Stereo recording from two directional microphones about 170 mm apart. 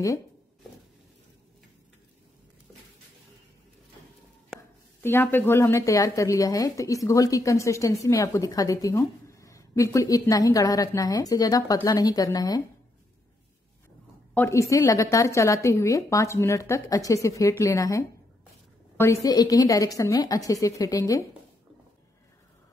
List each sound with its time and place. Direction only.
5.0 s a woman's voice: 10° left (ahead or behind)
14.3 s a woman's voice: 15° left (ahead or behind)
19.2 s a woman's voice: 20° left (ahead or behind)